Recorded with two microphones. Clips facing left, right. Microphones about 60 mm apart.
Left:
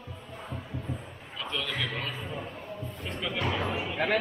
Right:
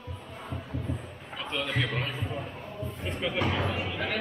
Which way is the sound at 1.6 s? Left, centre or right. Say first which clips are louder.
Right 5 dB; centre.